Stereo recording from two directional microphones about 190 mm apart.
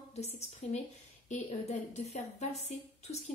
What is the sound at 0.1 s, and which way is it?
A woman's voice, 35° left (ahead or behind).